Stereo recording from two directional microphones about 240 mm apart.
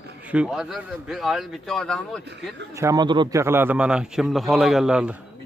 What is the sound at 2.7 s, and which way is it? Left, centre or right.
A man's voice, centre.